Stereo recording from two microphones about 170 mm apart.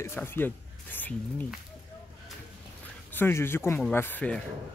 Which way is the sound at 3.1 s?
15° left (ahead or behind).